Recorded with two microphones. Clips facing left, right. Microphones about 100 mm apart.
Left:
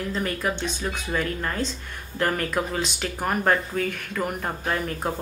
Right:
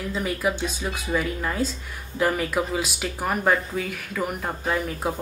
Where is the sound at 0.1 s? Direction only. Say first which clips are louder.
Right 4 dB; 5° right (ahead or behind).